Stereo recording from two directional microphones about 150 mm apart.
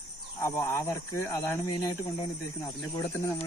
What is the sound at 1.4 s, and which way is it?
Speech, 15° left (ahead or behind).